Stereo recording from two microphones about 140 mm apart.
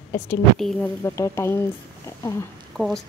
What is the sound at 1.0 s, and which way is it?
Speech, 20° left (ahead or behind).